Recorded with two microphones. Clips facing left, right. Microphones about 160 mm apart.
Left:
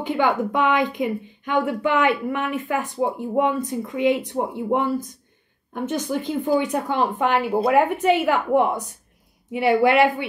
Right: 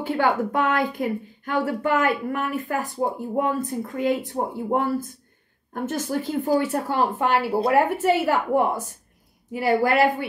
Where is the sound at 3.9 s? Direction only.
45° right (ahead or behind).